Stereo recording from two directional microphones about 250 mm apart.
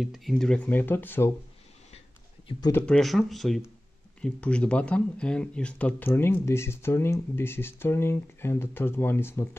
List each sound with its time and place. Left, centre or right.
0.0 s speech: centre
2.4 s speech: centre
2.9 s speech: centre